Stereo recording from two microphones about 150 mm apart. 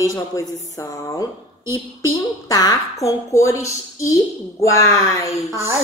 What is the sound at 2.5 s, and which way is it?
A woman's voice, 25° left (ahead or behind).